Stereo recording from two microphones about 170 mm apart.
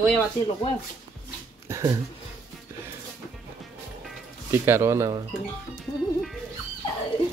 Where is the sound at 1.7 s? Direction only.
20° right (ahead or behind).